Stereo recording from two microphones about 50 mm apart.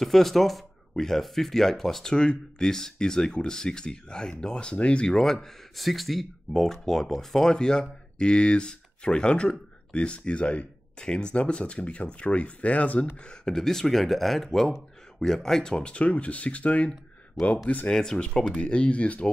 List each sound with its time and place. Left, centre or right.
0.0 s speech: centre; by 5.1 s left
5.1 s speech: centre; by 13.0 s left
13.2 s speech: centre
17.8 s speech: centre